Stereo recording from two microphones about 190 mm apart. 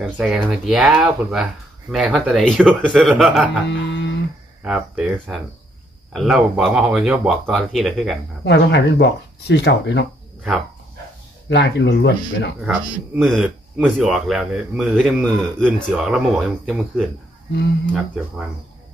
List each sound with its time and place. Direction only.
0.0 s speech: 5° right (ahead or behind)
3.6 s a sound: 70° left (ahead or behind)
4.6 s speech: 5° right (ahead or behind)
8.5 s speech: 65° left (ahead or behind)
11.4 s speech: 65° left (ahead or behind)
13.1 s speech: centre (ahead or behind)
17.5 s speech: 60° left (ahead or behind)